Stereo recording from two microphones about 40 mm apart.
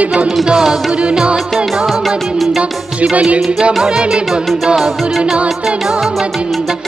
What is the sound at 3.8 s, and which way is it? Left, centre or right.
Music, right.